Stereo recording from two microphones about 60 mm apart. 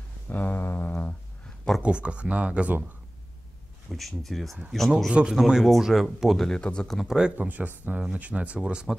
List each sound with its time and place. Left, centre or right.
0.3 s a sound: left
1.8 s speech: centre
3.9 s speech: centre
6.6 s speech: centre
7.1 s speech: centre
7.3 s speech: right